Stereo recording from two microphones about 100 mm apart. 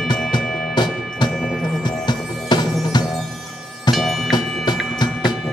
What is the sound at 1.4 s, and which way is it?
Music, 5° left (ahead or behind).